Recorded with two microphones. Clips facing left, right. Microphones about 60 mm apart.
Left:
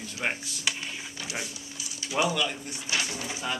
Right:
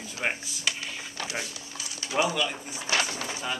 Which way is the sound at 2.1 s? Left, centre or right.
Centre.